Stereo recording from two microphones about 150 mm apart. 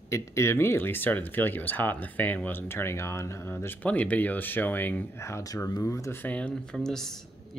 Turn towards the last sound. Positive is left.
turn(degrees=5)  # may be behind; listen again after turning